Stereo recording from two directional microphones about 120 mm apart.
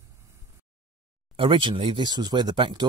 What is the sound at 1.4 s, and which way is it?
Speech, 45° right (ahead or behind).